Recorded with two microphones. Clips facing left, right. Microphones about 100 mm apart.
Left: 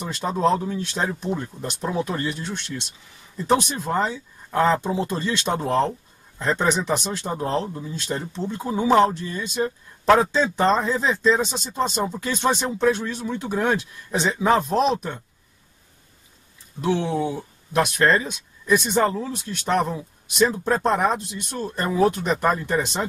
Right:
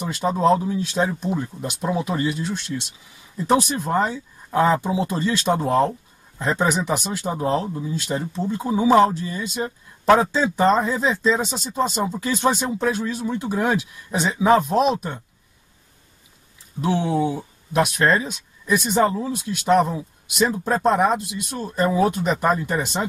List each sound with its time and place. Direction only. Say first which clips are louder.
0.1 s speech: right 3 dB; 5° right (ahead or behind)
16.8 s speech: right 1 dB; 15° right (ahead or behind)
17.9 s speech: even; 5° right (ahead or behind)